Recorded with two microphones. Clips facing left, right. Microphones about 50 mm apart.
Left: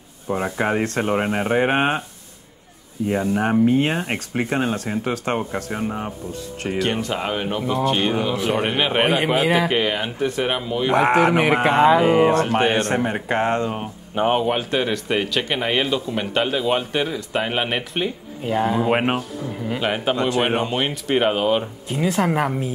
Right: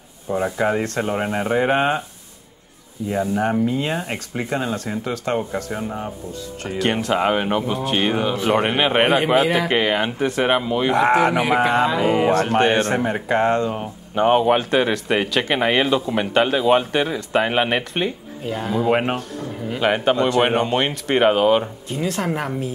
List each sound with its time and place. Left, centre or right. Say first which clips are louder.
0.6 s speech: left 1 dB; left
1.1 s speech: left 1 dB; centre
3.6 s speech: left 4 dB; left
3.9 s speech: left 1 dB; left
5.3 s speech: right 1 dB; centre
6.8 s speech: right 3 dB; centre
7.2 s speech: right 5 dB; centre
10.4 s speech: right 6 dB; centre
10.9 s speech: left 1 dB; centre
13.7 s speech: right 1 dB; centre
14.2 s speech: right 4 dB; centre
18.4 s speech: left 2 dB; centre
19.7 s speech: right 4 dB; centre
21.8 s speech: left 3 dB; centre